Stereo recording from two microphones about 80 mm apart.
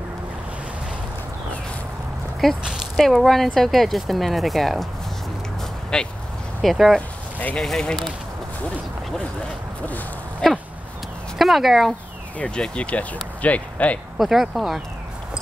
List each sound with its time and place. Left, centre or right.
2.6 s speech: centre
5.9 s speech: centre
10.4 s speech: centre
12.4 s speech: centre
14.1 s speech: centre